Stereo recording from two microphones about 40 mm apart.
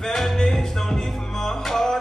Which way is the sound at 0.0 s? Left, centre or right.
Centre.